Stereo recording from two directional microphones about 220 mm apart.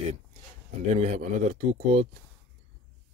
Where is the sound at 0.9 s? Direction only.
30° right (ahead or behind).